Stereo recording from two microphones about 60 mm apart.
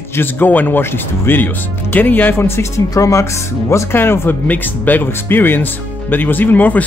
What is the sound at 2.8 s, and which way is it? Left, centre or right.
Speech, left.